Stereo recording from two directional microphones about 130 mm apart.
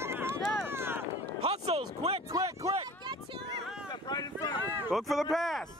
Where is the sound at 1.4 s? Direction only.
50° right (ahead or behind).